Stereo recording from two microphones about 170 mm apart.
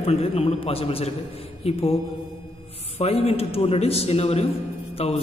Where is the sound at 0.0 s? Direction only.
35° left (ahead or behind).